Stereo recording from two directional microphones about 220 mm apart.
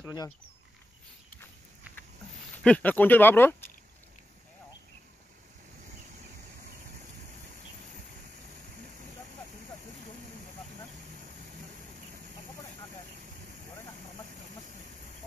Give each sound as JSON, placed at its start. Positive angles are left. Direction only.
{"t": 0.0, "sound": "speech", "side_deg": 15}
{"t": 2.6, "sound": "speech", "side_deg": 5}